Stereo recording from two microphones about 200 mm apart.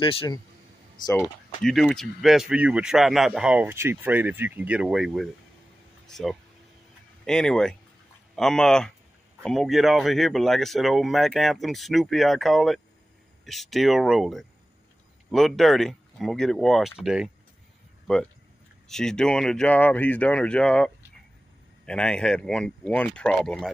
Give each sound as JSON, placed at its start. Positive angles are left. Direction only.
{"t": 0.0, "sound": "speech", "side_deg": 25}
{"t": 1.6, "sound": "speech", "side_deg": 0}